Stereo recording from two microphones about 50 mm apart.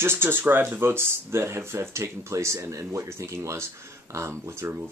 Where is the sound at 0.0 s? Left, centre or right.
Right.